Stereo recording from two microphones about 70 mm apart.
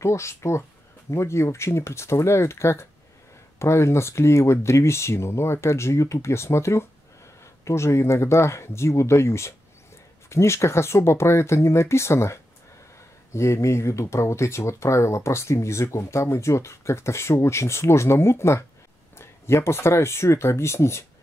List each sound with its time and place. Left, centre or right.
0.0 s speech: left